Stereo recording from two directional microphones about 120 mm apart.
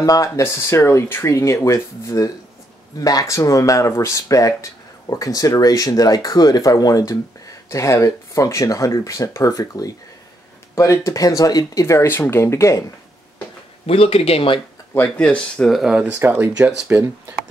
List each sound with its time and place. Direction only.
0.0 s speech: 30° left (ahead or behind)
13.8 s speech: 55° left (ahead or behind)
15.0 s speech: 10° left (ahead or behind); by 16.2 s 5° right (ahead or behind)
16.2 s speech: 20° right (ahead or behind)